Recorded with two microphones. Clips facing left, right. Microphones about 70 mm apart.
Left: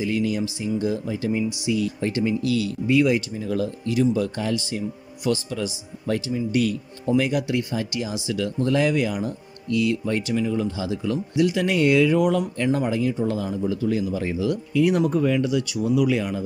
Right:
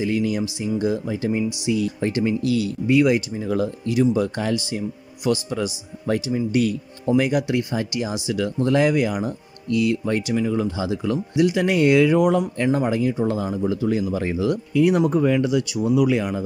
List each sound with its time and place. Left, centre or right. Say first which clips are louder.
0.0 s speech: right 2 dB; right
4.6 s speech: right 1 dB; centre; by 14.6 s right
14.8 s speech: right 2 dB; right